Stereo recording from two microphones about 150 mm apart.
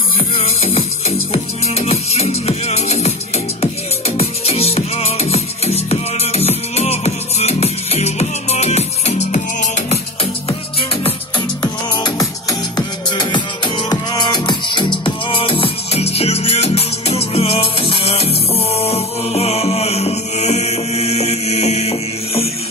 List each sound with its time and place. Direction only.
0.4 s music: 45° left (ahead or behind)
4.2 s music: 40° left (ahead or behind)
10.8 s music: 35° left (ahead or behind)